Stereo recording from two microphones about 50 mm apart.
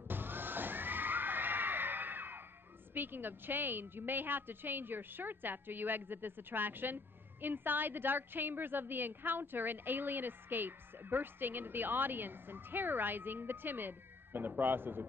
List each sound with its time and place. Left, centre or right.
0.1 s music: right
2.9 s a woman's voice: right